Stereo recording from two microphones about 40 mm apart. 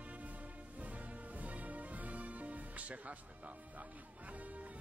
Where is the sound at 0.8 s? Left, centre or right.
Right.